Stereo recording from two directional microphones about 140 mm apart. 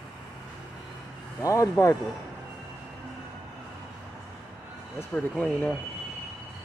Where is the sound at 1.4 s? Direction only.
20° left (ahead or behind).